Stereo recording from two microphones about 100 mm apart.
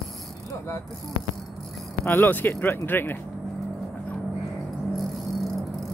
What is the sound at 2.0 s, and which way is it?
Speech, 20° left (ahead or behind).